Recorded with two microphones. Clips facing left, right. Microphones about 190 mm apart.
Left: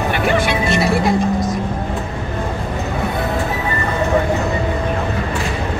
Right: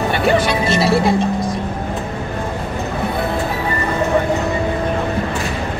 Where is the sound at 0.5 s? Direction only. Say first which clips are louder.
Right 1 dB; 30° right (ahead or behind).